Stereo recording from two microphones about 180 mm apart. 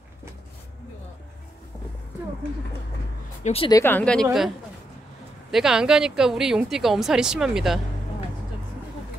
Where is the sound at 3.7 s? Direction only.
15° left (ahead or behind).